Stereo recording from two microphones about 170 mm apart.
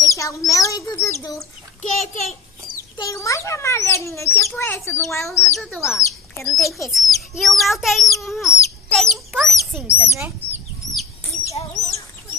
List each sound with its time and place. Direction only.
0.0 s speech: 20° left (ahead or behind)
1.8 s a sound: 45° left (ahead or behind)
3.0 s a child's voice: 20° left (ahead or behind)
5.0 s a child's voice: centre (ahead or behind)
10.0 s speech: 15° right (ahead or behind)
11.7 s chicken: 20° left (ahead or behind)